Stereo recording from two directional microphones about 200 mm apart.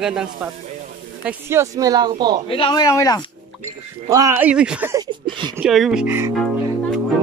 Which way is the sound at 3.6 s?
15° right (ahead or behind).